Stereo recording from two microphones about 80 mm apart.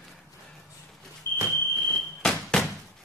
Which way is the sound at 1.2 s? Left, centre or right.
Right.